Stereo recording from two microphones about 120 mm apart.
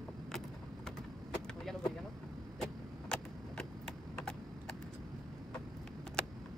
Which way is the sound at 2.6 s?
5° left (ahead or behind).